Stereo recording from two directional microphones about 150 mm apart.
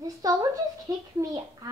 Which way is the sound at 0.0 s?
25° right (ahead or behind).